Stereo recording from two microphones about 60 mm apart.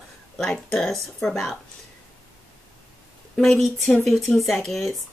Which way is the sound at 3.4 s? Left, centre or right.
Centre.